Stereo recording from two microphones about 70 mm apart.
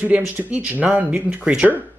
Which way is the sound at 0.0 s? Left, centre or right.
Right.